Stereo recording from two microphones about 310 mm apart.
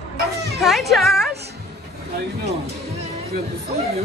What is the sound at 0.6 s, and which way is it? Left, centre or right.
Speech, centre.